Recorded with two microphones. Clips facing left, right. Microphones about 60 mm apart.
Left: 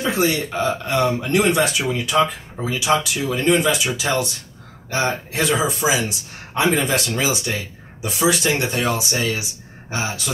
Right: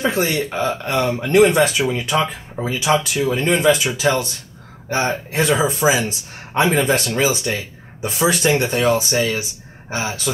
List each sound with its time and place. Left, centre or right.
0.0 s speech: right